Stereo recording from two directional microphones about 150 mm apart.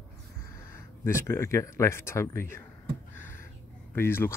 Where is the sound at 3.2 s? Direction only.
15° left (ahead or behind).